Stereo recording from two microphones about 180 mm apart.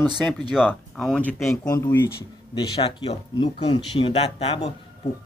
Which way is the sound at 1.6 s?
15° left (ahead or behind).